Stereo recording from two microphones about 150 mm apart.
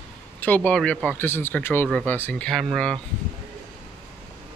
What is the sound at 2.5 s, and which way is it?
Speech, centre (ahead or behind).